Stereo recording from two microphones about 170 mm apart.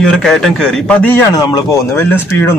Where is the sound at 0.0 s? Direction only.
Centre (ahead or behind).